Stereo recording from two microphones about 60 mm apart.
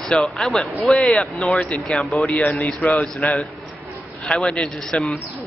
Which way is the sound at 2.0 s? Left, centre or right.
Centre.